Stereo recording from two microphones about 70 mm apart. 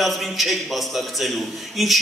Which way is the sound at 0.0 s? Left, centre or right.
Centre.